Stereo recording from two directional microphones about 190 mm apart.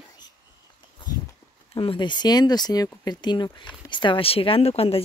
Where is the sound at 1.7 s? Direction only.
25° left (ahead or behind).